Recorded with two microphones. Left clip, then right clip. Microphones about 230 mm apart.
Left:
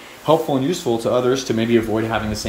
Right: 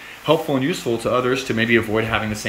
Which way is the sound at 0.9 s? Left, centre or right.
Centre.